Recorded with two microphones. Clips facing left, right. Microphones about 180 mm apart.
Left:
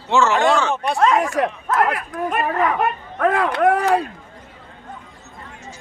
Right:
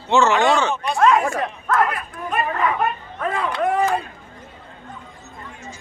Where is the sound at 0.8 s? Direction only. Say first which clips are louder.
Right 2 dB; 75° left (ahead or behind).